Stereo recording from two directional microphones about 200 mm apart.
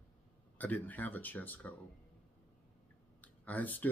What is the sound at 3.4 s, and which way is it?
Speech, 10° left (ahead or behind).